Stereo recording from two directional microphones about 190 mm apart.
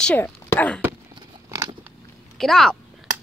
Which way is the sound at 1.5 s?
20° right (ahead or behind).